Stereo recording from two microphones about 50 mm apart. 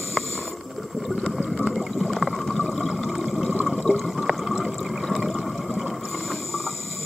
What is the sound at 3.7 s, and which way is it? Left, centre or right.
Water, centre.